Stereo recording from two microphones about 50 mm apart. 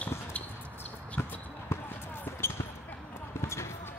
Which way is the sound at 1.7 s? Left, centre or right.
Left.